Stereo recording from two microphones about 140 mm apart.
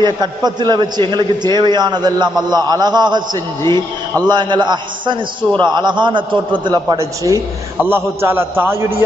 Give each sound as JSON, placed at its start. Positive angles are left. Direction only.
{"t": 0.0, "sound": "a man's voice", "side_deg": -30}